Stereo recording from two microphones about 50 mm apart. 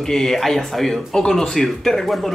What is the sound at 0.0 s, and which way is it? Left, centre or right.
Speech, centre.